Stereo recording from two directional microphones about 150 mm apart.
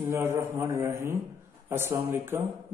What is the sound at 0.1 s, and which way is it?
Speech, 15° right (ahead or behind).